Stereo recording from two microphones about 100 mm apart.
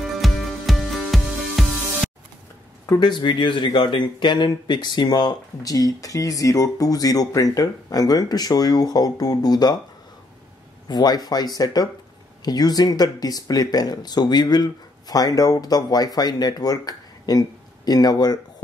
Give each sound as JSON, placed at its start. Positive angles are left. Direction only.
{"t": 0.2, "sound": "music", "side_deg": 0}
{"t": 3.0, "sound": "speech", "side_deg": 50}
{"t": 10.9, "sound": "speech", "side_deg": 45}